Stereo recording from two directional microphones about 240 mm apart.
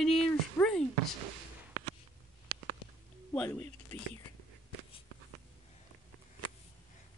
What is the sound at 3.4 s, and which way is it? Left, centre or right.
Speech, centre.